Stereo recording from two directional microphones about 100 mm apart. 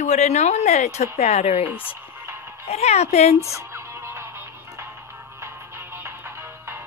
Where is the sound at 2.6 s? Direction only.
90° left.